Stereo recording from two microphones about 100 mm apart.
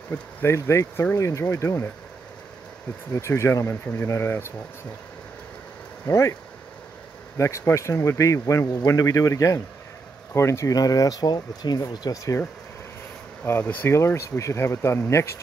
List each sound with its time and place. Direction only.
0.1 s speech: 25° left (ahead or behind)
3.1 s speech: 30° left (ahead or behind)
6.0 s speech: 30° left (ahead or behind)
7.3 s speech: 30° left (ahead or behind)
13.4 s speech: 20° left (ahead or behind)